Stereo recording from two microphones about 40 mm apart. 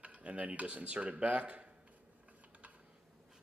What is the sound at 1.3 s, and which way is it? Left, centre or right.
Speech, right.